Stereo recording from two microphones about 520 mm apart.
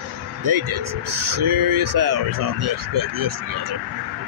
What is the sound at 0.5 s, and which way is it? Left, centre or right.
Speech, right.